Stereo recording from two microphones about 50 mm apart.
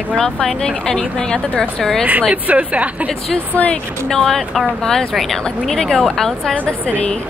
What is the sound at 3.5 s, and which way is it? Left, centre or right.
Speech, left.